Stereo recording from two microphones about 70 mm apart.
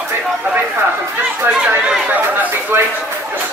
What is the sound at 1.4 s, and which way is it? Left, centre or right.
Speech, centre.